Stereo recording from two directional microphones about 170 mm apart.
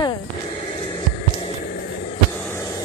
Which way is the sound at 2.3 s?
15° left (ahead or behind).